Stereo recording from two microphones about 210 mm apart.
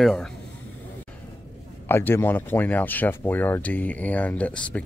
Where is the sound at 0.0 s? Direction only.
5° left (ahead or behind).